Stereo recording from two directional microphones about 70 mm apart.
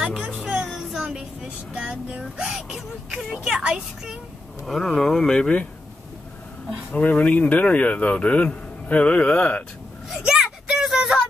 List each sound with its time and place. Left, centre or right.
0.0 s speech: centre
1.0 s speech: centre
4.6 s speech: centre
6.9 s speech: left
10.0 s a child's voice: centre
10.3 s a sound: centre